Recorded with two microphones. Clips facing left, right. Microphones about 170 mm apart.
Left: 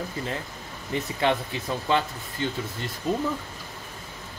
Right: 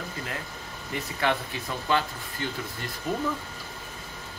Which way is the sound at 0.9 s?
25° left (ahead or behind).